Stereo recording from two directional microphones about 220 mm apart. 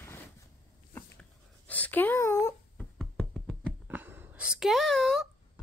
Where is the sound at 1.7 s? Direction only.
5° left (ahead or behind).